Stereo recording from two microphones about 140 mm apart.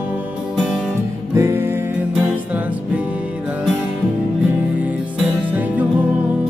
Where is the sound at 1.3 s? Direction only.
20° right (ahead or behind).